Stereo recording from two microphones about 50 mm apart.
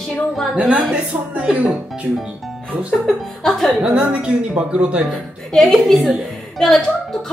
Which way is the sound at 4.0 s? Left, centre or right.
Right.